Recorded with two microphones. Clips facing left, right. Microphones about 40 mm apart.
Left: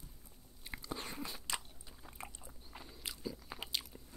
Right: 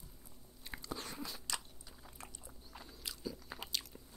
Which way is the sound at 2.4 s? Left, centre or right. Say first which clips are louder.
Left 1 dB; centre.